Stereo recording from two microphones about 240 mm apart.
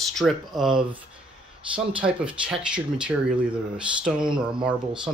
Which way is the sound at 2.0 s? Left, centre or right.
Centre.